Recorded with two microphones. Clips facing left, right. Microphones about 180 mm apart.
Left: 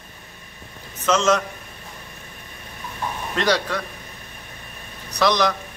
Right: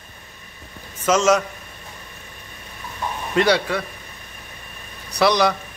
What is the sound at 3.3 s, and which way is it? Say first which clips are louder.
Speech: right 4 dB; 10° right (ahead or behind).